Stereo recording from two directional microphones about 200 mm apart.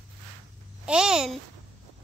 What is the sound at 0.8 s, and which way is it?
Speech, 5° right (ahead or behind).